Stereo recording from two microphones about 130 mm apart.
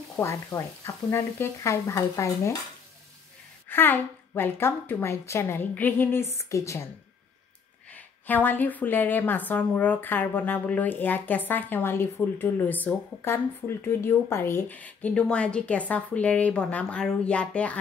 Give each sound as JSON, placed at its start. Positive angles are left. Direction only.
{"t": 0.1, "sound": "speech", "side_deg": 20}
{"t": 3.6, "sound": "a woman's voice", "side_deg": 15}
{"t": 7.9, "sound": "a woman's voice", "side_deg": 15}